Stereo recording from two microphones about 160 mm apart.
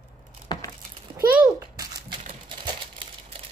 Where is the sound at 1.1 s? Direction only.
15° right (ahead or behind).